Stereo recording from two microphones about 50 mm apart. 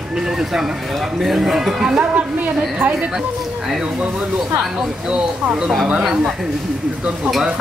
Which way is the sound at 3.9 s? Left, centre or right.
Centre.